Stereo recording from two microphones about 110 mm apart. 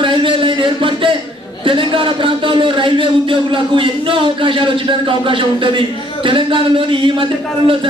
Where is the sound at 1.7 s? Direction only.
50° right (ahead or behind).